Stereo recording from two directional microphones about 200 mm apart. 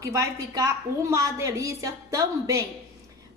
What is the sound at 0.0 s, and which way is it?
A woman's voice, 15° right (ahead or behind).